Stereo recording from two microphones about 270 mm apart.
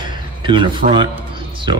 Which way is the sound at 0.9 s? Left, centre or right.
Centre.